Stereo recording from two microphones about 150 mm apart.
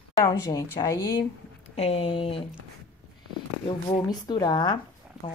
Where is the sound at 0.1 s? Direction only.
20° left (ahead or behind).